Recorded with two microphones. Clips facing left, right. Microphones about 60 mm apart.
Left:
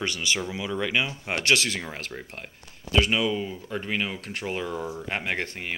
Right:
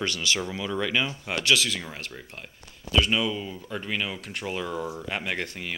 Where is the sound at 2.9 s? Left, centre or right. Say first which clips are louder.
Left 1 dB; left.